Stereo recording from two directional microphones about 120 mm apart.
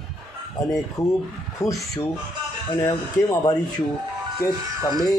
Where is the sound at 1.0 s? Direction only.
30° left (ahead or behind).